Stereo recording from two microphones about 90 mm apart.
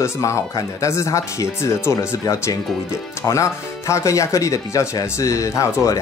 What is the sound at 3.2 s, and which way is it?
Speech, 35° left (ahead or behind).